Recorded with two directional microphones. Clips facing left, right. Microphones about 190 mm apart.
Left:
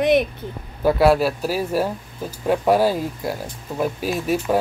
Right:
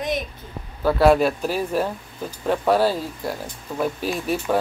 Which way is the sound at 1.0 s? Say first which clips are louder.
Right 2 dB; 5° left (ahead or behind).